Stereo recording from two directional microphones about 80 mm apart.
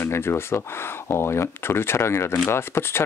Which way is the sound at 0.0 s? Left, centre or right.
Left.